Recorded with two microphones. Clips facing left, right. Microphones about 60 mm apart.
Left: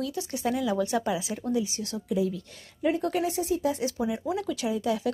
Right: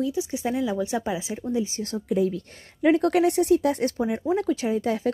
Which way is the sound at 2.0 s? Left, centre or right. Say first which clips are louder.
Right 4 dB; right.